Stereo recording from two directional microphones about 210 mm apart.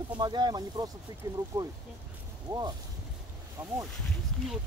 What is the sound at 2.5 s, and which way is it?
Speech, 15° right (ahead or behind).